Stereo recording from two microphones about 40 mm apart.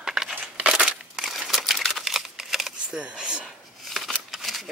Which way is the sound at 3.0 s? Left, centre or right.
Right.